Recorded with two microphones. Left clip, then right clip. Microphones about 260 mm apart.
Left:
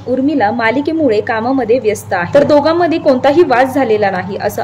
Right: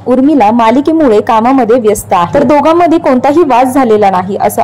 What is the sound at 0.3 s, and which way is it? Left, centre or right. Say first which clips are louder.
A woman's voice: right 6 dB; centre.